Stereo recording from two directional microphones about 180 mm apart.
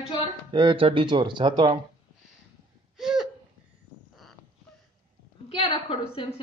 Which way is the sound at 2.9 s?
Centre (ahead or behind).